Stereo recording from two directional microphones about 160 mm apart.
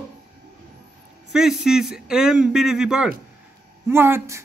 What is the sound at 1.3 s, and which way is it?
A man's voice, 5° right (ahead or behind).